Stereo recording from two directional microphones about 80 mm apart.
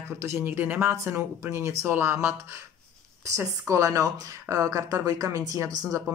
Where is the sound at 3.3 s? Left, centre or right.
Right.